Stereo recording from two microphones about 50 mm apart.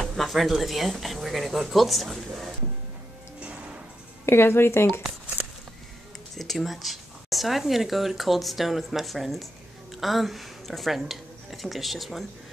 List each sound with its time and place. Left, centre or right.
0.1 s speech: centre
4.3 s speech: left
6.3 s speech: centre